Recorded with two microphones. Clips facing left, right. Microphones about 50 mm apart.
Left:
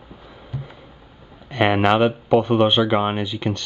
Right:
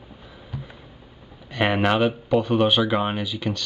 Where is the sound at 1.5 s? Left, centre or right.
Centre.